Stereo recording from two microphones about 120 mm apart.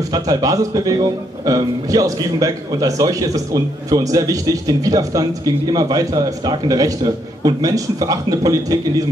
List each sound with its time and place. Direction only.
0.1 s a man's voice: 30° right (ahead or behind)